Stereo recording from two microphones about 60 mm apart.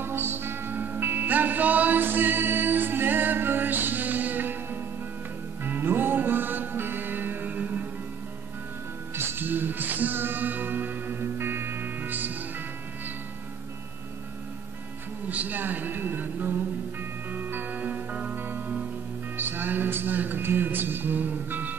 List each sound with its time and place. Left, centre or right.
0.0 s music: right
9.1 s music: right
15.2 s a sound: right
17.3 s music: right
18.3 s music: right